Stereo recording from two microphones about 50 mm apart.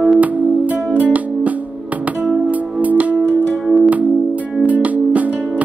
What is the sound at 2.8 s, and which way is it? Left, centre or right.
Music, right.